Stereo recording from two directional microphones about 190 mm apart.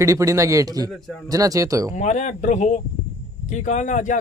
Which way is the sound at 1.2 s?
20° right (ahead or behind).